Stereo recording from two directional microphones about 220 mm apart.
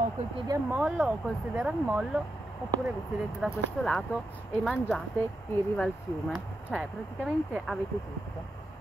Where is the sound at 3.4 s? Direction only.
Centre (ahead or behind).